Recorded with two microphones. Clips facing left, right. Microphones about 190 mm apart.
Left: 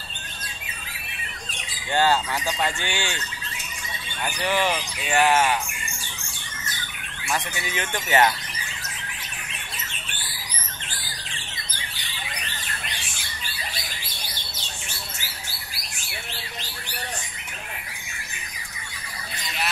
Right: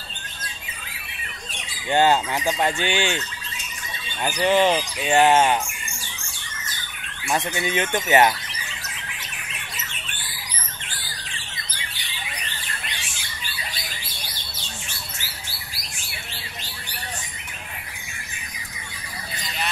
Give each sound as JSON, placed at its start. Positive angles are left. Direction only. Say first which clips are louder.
{"t": 1.9, "sound": "speech", "louder": "right 3 dB", "side_deg": -20}
{"t": 4.4, "sound": "speech", "louder": "right 6 dB", "side_deg": -20}
{"t": 7.2, "sound": "speech", "louder": "right 5 dB", "side_deg": -25}